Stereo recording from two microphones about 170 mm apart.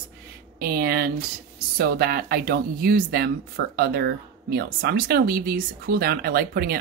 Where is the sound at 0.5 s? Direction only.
60° right (ahead or behind).